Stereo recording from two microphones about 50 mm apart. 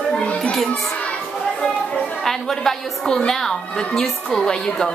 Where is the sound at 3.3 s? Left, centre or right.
Centre.